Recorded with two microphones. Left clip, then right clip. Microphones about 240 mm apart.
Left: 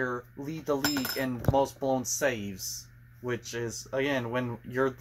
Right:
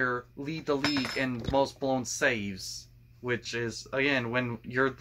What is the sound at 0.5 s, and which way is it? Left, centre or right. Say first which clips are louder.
Speech: even; right.